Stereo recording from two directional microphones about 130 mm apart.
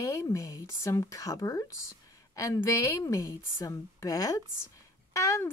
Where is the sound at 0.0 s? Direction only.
25° left (ahead or behind).